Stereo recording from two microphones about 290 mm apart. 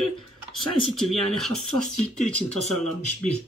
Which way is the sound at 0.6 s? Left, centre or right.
Centre.